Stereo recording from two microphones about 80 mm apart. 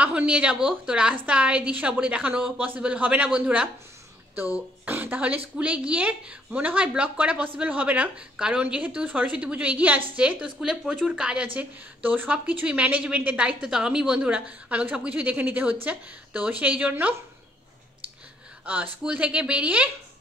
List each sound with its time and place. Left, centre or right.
0.0 s a woman's voice: centre
4.8 s speech: right
18.7 s speech: centre